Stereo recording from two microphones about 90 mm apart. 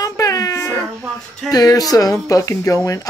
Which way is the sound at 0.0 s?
40° left (ahead or behind).